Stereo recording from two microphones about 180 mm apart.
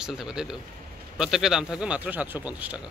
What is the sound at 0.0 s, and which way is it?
A man's voice, 5° right (ahead or behind).